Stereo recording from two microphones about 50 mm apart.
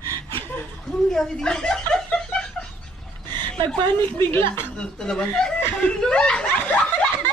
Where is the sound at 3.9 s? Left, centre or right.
Left.